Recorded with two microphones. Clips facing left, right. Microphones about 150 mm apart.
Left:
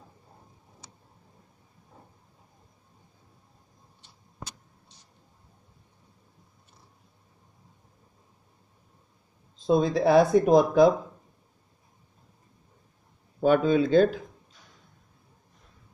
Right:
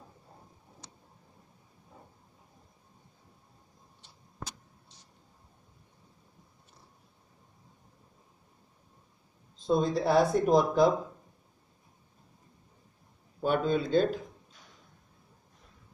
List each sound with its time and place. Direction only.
0.8 s vehicle: 5° left (ahead or behind)
9.7 s speech: 90° left
10.5 s speech: 70° left (ahead or behind)
13.4 s speech: 90° left